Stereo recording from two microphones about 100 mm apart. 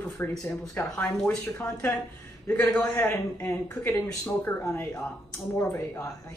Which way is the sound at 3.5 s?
30° left (ahead or behind).